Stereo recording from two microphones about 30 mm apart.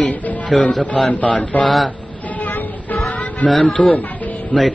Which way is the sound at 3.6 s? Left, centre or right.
Left.